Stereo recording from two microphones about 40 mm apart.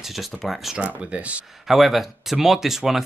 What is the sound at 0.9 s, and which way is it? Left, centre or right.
Speech, right.